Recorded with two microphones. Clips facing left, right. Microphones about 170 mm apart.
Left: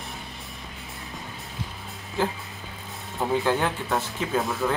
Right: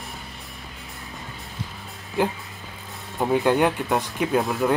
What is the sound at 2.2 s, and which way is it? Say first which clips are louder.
Speech: right 3 dB; 15° right (ahead or behind).